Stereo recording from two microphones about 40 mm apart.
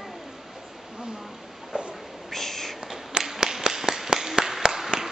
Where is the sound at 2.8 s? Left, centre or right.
Centre.